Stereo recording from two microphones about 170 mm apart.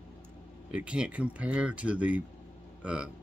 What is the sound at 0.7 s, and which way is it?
Speech, 5° right (ahead or behind).